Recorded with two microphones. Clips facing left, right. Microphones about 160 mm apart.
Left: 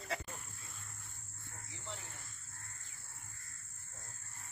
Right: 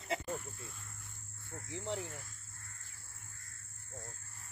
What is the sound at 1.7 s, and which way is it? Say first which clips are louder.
Speech: right 11 dB; 70° right (ahead or behind).